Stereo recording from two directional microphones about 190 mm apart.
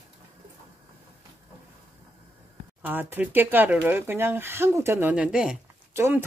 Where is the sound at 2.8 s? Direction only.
10° right (ahead or behind).